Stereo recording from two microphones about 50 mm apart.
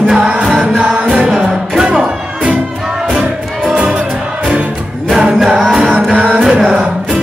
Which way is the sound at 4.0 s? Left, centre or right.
Right.